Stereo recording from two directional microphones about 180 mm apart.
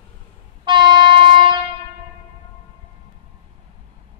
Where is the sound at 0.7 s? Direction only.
25° right (ahead or behind).